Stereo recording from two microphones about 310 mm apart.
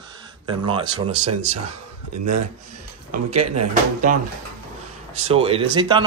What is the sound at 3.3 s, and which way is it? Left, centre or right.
Speech, right.